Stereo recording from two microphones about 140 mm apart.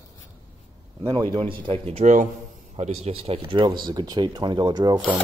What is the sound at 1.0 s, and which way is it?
Speech, 30° right (ahead or behind).